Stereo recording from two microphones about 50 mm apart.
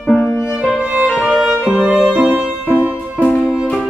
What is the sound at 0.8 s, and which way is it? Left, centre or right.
Music, right.